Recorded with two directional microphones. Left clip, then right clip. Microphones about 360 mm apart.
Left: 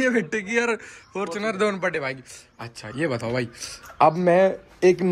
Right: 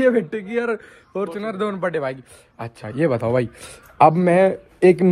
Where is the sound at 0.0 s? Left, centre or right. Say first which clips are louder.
Right 5 dB; centre.